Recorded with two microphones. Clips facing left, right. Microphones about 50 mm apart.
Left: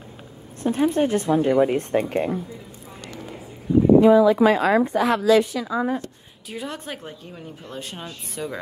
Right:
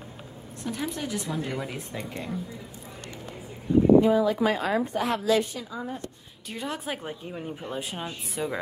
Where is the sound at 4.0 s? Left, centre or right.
Left.